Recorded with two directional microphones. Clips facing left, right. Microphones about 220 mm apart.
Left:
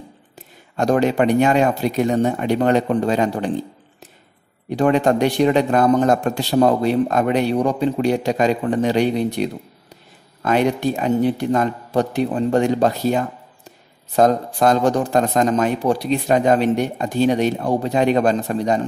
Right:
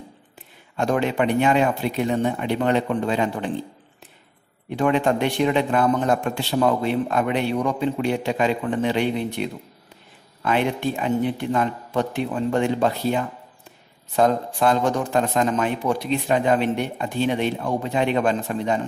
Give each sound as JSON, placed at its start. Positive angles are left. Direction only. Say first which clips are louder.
{"t": 0.4, "sound": "a man's voice", "louder": "left 4 dB", "side_deg": 40}
{"t": 4.6, "sound": "a man's voice", "louder": "left 4 dB", "side_deg": 40}